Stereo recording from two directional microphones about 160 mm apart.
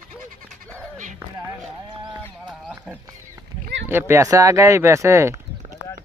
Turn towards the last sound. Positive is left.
turn(degrees=-20)  # may be behind; listen again after turning